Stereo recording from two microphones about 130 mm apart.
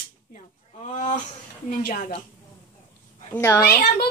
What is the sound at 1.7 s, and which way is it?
Speech, 90° left.